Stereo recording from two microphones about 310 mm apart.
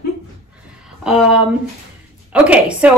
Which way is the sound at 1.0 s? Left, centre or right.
Centre.